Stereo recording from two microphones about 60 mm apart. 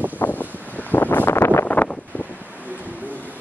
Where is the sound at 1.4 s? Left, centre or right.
Left.